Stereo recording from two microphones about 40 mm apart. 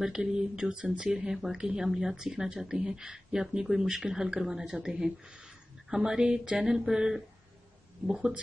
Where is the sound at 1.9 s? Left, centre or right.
Centre.